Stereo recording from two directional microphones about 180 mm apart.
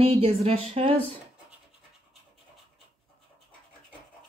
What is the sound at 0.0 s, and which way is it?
Speech, 35° right (ahead or behind).